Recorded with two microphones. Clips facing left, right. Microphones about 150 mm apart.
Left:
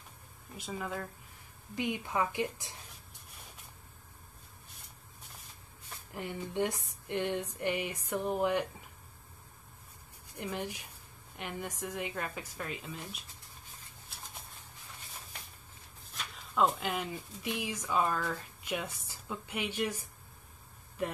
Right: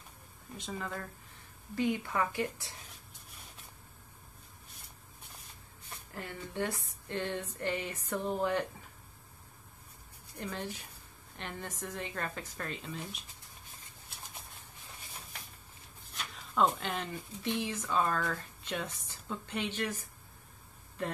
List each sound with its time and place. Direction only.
0.6 s speech: 5° left (ahead or behind)
1.8 s speech: 20° left (ahead or behind)
6.1 s speech: 15° left (ahead or behind)
10.4 s speech: 15° left (ahead or behind)
16.5 s speech: 5° left (ahead or behind)